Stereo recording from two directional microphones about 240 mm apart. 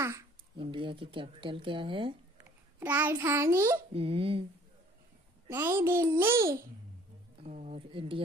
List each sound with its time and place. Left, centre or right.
0.6 s speech: right
2.3 s a child's voice: centre
3.9 s speech: right
5.5 s a child's voice: centre
7.4 s speech: right